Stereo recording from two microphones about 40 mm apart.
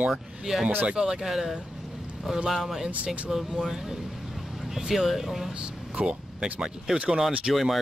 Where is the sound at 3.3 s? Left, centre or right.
Centre.